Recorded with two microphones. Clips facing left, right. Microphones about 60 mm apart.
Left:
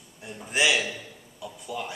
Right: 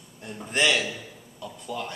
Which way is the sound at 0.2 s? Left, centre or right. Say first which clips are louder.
Even; centre.